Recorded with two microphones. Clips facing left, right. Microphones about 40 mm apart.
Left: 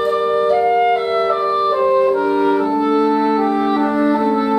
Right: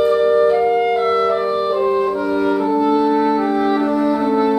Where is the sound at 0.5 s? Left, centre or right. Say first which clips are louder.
Left 1 dB; centre.